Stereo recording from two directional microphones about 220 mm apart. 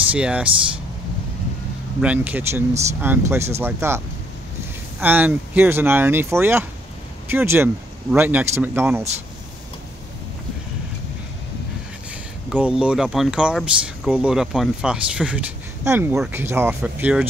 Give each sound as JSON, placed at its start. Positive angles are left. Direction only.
{"t": 0.1, "sound": "speech", "side_deg": -5}
{"t": 2.0, "sound": "a man's voice", "side_deg": -5}
{"t": 5.0, "sound": "a man's voice", "side_deg": -10}
{"t": 12.4, "sound": "speech", "side_deg": -5}